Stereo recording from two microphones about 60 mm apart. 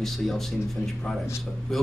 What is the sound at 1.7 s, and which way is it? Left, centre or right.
Speech, centre.